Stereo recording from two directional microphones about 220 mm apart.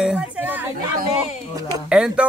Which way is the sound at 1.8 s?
5° right (ahead or behind).